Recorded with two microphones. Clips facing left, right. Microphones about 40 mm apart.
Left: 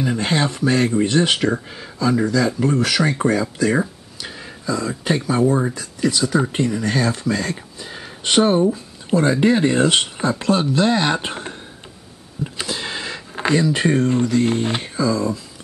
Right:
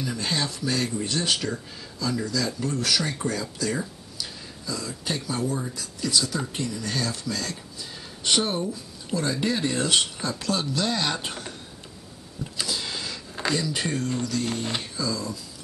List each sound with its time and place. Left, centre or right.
0.0 s speech: left
12.5 s speech: left